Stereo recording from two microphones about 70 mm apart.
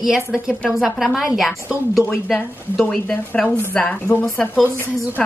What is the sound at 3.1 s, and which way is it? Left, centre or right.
A woman's voice, left.